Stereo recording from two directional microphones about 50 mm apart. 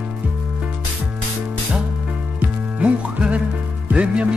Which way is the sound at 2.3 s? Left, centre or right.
Right.